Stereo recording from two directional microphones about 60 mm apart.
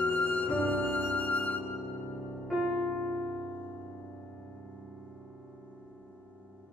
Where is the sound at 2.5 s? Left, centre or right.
Centre.